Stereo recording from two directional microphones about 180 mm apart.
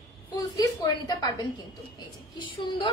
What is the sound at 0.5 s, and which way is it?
A woman's voice, 20° left (ahead or behind).